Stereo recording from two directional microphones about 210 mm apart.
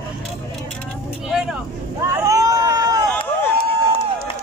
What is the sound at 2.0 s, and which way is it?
Boat, 15° right (ahead or behind).